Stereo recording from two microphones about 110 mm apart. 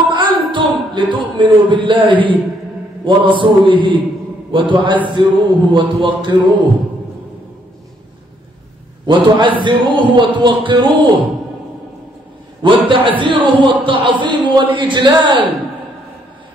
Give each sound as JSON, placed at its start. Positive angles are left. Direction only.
{"t": 0.1, "sound": "a sound", "side_deg": -45}
{"t": 3.3, "sound": "speech", "side_deg": -50}
{"t": 9.0, "sound": "speech", "side_deg": -45}
{"t": 12.6, "sound": "speech", "side_deg": -50}